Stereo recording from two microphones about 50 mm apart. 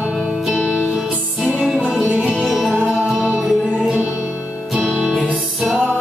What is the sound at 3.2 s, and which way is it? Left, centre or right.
Music, centre.